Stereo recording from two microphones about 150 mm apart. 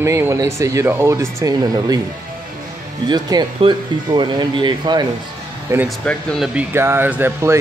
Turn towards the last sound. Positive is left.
turn(degrees=-15)  # may be behind; listen again after turning